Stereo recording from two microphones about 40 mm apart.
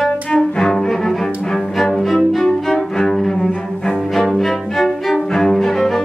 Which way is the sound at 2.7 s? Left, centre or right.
Centre.